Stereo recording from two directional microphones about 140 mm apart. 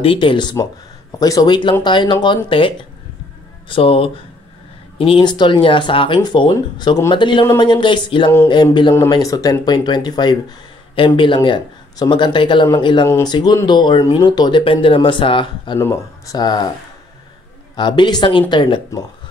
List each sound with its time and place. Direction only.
0.0 s speech: 40° left (ahead or behind)
9.1 s speech: 25° left (ahead or behind)
15.8 s speech: 20° left (ahead or behind)
17.7 s speech: 35° left (ahead or behind)